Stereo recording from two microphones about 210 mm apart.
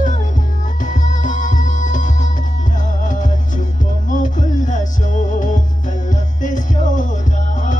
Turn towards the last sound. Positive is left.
turn(degrees=35)  # may be behind; listen again after turning